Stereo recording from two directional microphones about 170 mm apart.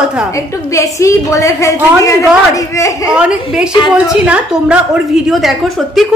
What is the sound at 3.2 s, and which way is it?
Speech, 5° right (ahead or behind).